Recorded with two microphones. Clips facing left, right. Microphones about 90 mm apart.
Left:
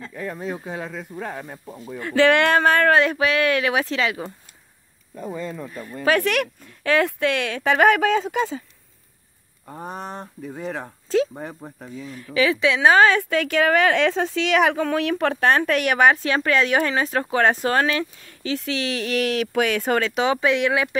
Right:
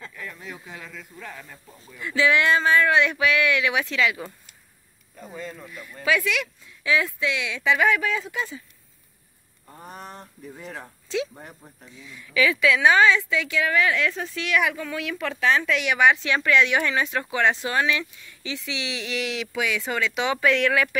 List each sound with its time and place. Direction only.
0.1 s speech: 40° left (ahead or behind)
1.9 s speech: 55° left (ahead or behind)
2.9 s speech: 40° left (ahead or behind)
5.7 s speech: 40° left (ahead or behind); by 8.6 s 85° left
9.7 s a woman's voice: 45° left (ahead or behind)
9.9 s speech: 60° left (ahead or behind)
10.4 s speech: 70° left (ahead or behind)
11.1 s speech: 40° left (ahead or behind)
12.9 s a woman's voice: 50° left (ahead or behind)
20.3 s speech: 20° left (ahead or behind)